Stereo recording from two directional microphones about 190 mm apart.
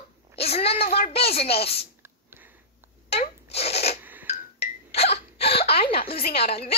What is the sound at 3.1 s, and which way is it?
Rub, 35° left (ahead or behind).